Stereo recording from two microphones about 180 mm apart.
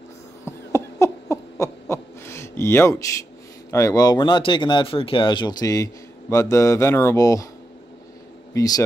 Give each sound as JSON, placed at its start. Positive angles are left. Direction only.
{"t": 0.5, "sound": "owl", "side_deg": 15}
{"t": 3.7, "sound": "speech", "side_deg": 20}
{"t": 6.3, "sound": "mantra", "side_deg": 15}
{"t": 8.5, "sound": "speech", "side_deg": 20}